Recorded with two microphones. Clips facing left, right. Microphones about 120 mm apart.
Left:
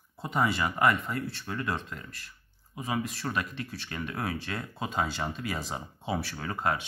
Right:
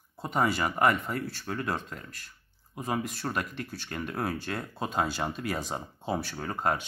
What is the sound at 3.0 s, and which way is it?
Speech, centre (ahead or behind).